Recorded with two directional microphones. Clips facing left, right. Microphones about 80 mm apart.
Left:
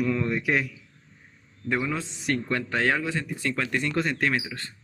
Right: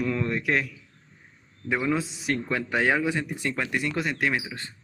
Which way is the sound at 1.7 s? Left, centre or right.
Centre.